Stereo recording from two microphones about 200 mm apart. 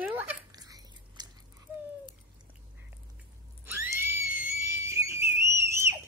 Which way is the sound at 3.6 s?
10° right (ahead or behind).